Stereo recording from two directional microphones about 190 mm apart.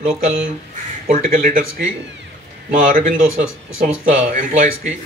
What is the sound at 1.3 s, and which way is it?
Speech, 50° right (ahead or behind).